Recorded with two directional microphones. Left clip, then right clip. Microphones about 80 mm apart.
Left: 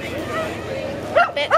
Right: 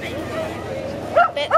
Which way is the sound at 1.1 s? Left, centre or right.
Left.